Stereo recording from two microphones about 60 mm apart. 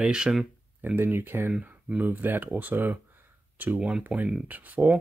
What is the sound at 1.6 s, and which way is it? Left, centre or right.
Speech, right.